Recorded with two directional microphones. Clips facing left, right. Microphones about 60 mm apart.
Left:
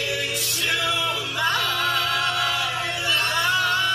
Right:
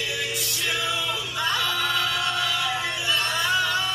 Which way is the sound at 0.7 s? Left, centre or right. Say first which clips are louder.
Left 3 dB; left.